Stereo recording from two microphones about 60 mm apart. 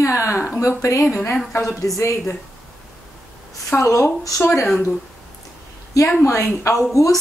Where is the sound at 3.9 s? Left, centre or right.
Left.